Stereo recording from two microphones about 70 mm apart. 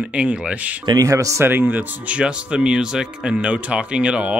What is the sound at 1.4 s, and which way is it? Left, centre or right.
Speech, right.